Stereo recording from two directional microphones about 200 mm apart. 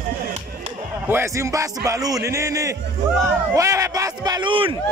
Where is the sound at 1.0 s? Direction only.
15° right (ahead or behind).